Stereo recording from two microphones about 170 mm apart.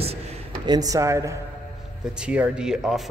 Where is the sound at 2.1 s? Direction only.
5° right (ahead or behind).